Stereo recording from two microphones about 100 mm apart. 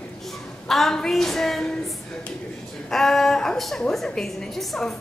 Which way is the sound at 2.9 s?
5° left (ahead or behind).